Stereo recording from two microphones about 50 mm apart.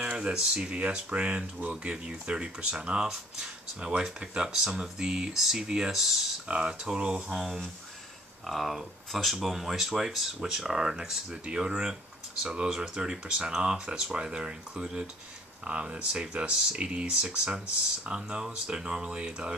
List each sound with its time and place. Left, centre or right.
0.0 s speech: centre
0.7 s speech: right; by 6.2 s centre
6.4 s speech: centre